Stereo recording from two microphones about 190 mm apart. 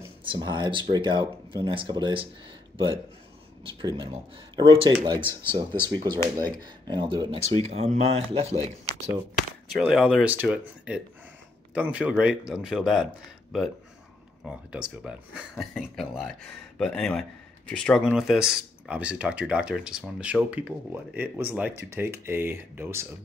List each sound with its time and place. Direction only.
0.2 s speech: 25° right (ahead or behind)
3.6 s speech: 25° right (ahead or behind)
9.7 s speech: centre (ahead or behind)
14.7 s speech: 5° right (ahead or behind)